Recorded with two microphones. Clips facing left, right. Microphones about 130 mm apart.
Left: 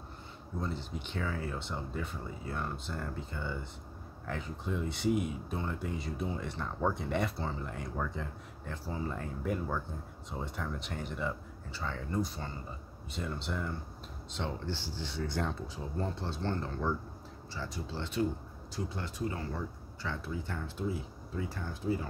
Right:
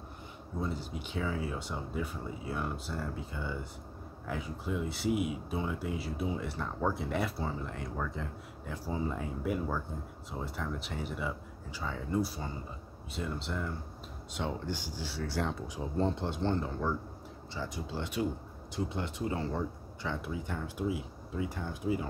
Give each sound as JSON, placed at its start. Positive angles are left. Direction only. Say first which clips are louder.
{"t": 0.6, "sound": "speech", "louder": "right 1 dB", "side_deg": -10}
{"t": 8.7, "sound": "speech", "louder": "right 3 dB", "side_deg": -15}
{"t": 14.3, "sound": "speech", "louder": "right 2 dB", "side_deg": -10}
{"t": 16.0, "sound": "speech", "louder": "right 5 dB", "side_deg": -20}